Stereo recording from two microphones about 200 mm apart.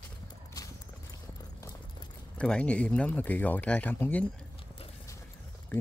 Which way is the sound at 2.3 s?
5° left (ahead or behind).